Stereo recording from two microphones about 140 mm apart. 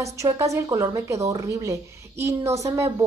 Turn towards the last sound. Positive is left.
turn(degrees=-25)  # may be behind; listen again after turning